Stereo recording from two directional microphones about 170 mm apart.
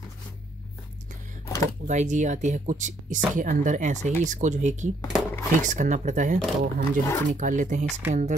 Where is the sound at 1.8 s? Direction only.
45° right (ahead or behind).